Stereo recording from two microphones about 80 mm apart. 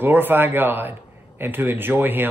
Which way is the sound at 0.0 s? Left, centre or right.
Right.